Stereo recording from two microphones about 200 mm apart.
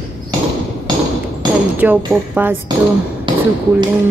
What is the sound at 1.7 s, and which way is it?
Speech, 10° right (ahead or behind).